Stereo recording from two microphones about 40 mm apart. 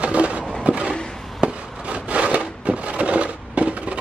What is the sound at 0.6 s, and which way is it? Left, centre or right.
Vehicle, right.